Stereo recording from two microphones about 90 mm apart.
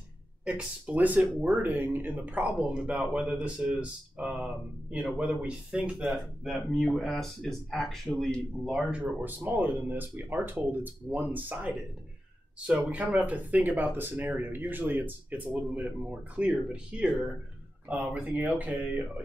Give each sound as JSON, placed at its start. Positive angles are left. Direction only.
{"t": 0.5, "sound": "speech", "side_deg": -15}
{"t": 8.6, "sound": "speech", "side_deg": -10}
{"t": 12.9, "sound": "speech", "side_deg": -15}